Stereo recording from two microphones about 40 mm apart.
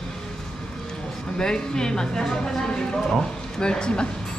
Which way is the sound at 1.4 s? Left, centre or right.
Centre.